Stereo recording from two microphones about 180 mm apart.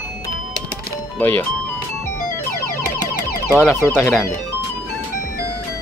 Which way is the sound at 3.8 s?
15° left (ahead or behind).